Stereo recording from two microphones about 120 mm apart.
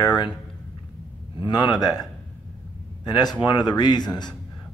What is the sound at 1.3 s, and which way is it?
Speech, 40° left (ahead or behind).